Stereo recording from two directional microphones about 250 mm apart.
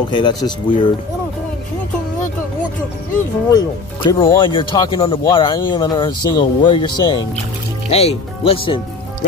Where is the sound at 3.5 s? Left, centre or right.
Centre.